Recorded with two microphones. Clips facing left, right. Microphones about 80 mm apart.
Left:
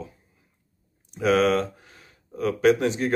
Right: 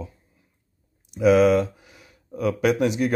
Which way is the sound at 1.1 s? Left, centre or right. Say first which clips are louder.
Right 4 dB; centre.